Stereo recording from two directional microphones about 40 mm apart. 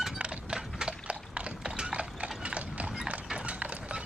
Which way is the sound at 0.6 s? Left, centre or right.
Centre.